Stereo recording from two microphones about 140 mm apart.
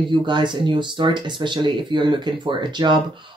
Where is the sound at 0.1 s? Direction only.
35° right (ahead or behind).